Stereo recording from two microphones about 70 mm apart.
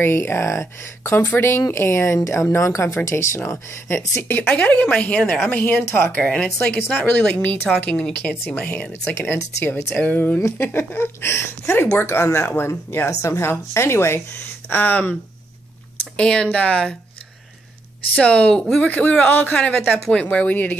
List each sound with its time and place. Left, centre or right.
0.0 s speech: left
4.2 s speech: left
6.2 s speech: centre
6.7 s speech: left
9.0 s speech: left
10.4 s speech: left
16.2 s speech: centre
18.1 s speech: centre